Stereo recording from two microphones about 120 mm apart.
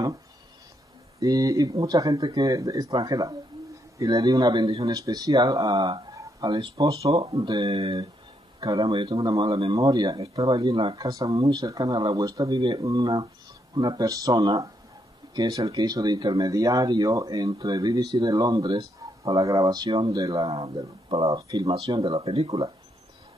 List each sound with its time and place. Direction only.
1.2 s speech: 30° right (ahead or behind)
7.6 s speech: 55° right (ahead or behind)
8.5 s speech: 35° right (ahead or behind)
10.7 s speech: 50° right (ahead or behind)
11.0 s speech: 30° right (ahead or behind)
12.8 s speech: 30° right (ahead or behind)
20.4 s speech: 50° right (ahead or behind)
21.4 s speech: 30° right (ahead or behind)
21.6 s speech: 40° right (ahead or behind)